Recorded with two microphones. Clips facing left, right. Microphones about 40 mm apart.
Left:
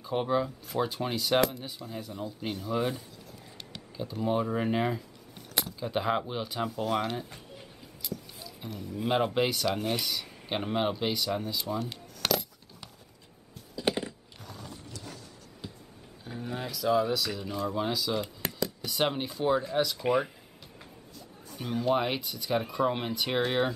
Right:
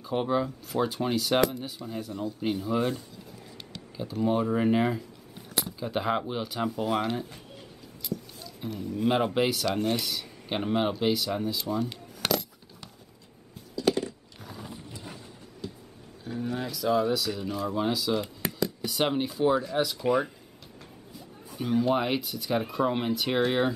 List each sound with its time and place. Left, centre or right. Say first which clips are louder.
0.0 s speech: right 1 dB; centre
13.7 s a sound: right 4 dB; left
14.4 s mechanisms: right 3 dB; centre
15.6 s a sound: right 5 dB; centre
16.4 s speech: right 1 dB; centre
20.0 s speech: right 3 dB; centre
21.1 s speech: right 4 dB; centre